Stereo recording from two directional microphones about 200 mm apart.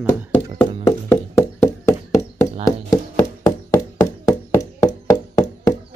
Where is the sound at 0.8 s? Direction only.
15° left (ahead or behind).